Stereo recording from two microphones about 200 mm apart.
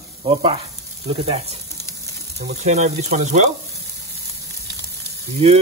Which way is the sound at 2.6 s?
35° right (ahead or behind).